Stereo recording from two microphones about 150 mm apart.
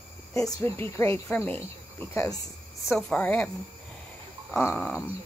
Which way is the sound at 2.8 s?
5° left (ahead or behind).